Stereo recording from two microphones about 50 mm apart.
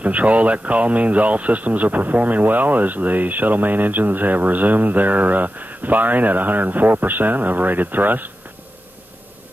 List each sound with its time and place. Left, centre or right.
0.0 s speech: right